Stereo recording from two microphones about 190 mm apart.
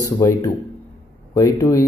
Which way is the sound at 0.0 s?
20° left (ahead or behind).